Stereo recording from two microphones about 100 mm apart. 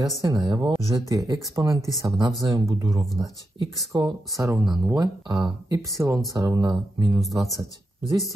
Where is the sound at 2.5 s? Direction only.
35° right (ahead or behind).